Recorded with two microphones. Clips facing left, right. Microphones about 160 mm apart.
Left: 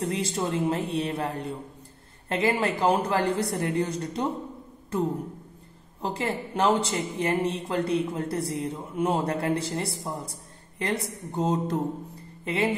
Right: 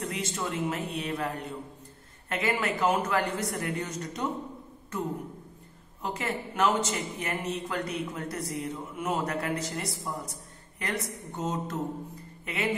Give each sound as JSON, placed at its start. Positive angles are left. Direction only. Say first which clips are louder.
{"t": 0.0, "sound": "speech", "louder": "left 5 dB", "side_deg": 30}
{"t": 6.0, "sound": "speech", "louder": "left 3 dB", "side_deg": 30}